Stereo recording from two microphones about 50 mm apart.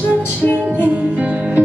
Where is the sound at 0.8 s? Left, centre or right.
Right.